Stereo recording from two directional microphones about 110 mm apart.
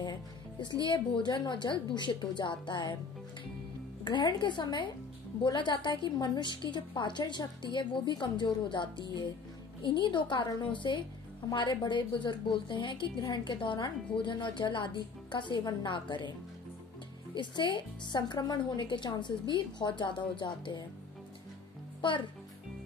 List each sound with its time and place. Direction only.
0.0 s music: 45° left (ahead or behind)
0.8 s a woman's voice: 45° left (ahead or behind)
4.0 s a woman's voice: 45° left (ahead or behind)
17.4 s a woman's voice: 45° left (ahead or behind)
22.0 s a woman's voice: 50° left (ahead or behind)